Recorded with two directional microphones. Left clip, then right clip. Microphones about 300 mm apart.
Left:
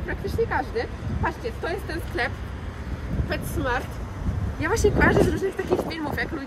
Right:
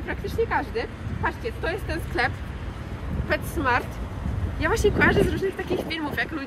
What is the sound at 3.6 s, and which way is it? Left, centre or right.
Speech, right.